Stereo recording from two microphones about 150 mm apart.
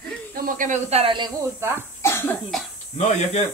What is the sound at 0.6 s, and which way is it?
Speech, 50° right (ahead or behind).